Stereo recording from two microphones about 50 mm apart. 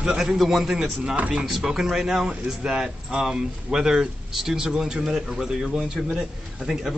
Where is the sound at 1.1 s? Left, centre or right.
Right.